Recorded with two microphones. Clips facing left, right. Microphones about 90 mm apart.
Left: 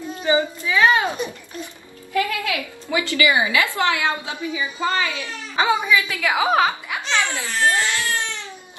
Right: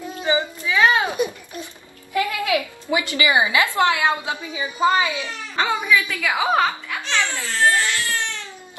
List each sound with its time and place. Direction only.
0.2 s a sound: 20° right (ahead or behind)
2.1 s a woman's voice: 20° right (ahead or behind)
5.9 s a woman's voice: 10° left (ahead or behind)
6.2 s speech: centre (ahead or behind)
6.9 s crying: 15° left (ahead or behind)